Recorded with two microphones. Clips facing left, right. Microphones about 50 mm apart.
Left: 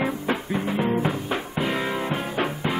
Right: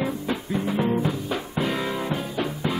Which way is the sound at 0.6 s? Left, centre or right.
Centre.